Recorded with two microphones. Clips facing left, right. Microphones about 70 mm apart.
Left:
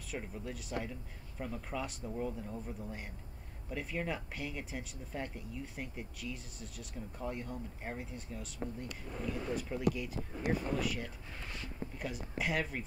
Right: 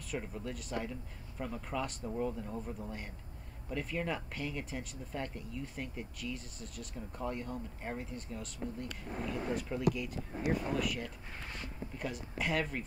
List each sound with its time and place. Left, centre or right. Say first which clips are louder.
0.1 s speech: right 2 dB; centre
3.7 s speech: right 2 dB; centre
8.8 s speech: right 1 dB; right
9.6 s speech: even; centre